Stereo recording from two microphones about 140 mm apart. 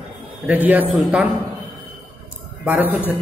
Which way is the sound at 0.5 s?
10° right (ahead or behind).